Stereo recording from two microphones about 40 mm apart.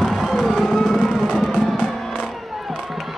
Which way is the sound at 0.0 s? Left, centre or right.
Centre.